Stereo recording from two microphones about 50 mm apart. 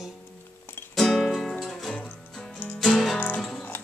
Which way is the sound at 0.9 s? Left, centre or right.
Centre.